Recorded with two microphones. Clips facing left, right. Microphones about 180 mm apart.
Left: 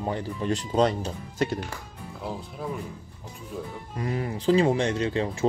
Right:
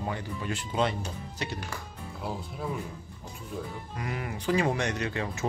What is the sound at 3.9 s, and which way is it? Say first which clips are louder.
Speech: left 7 dB; 30° left (ahead or behind).